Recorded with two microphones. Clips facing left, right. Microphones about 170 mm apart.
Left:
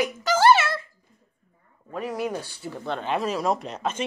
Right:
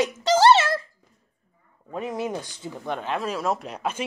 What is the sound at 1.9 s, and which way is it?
Speech, 20° right (ahead or behind).